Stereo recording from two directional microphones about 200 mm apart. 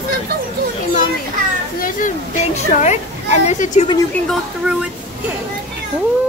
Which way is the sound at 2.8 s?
35° left (ahead or behind).